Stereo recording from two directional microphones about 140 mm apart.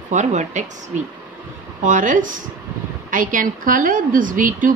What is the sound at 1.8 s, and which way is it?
A woman's voice, 65° right (ahead or behind).